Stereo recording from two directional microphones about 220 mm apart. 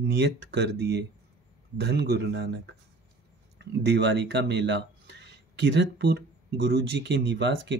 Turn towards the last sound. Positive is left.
turn(degrees=-55)  # may be behind; listen again after turning